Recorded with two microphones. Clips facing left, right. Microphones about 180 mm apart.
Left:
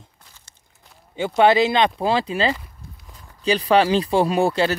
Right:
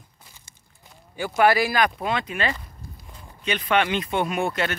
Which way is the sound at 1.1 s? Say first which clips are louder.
Left 4 dB; 25° left (ahead or behind).